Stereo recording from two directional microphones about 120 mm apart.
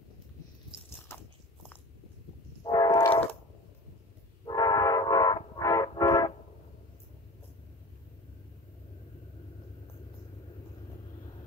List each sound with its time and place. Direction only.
2.6 s train: 35° left (ahead or behind)
3.1 s a sound: 50° left (ahead or behind)
4.5 s train: 35° left (ahead or behind)